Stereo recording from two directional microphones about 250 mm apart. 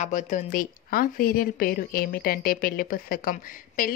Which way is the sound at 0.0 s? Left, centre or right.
Left.